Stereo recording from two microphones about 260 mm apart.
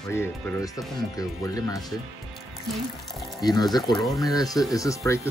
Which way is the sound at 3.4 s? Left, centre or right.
Centre.